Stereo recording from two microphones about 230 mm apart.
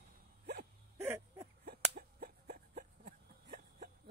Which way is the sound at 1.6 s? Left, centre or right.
Right.